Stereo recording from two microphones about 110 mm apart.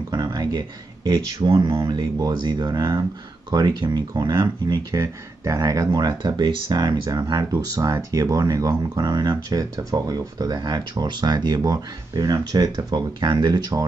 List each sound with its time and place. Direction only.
0.1 s speech: 40° right (ahead or behind)
1.6 s speech: 25° right (ahead or behind)